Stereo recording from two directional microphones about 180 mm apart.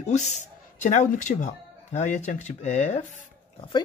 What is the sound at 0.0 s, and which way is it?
Speech, 40° left (ahead or behind).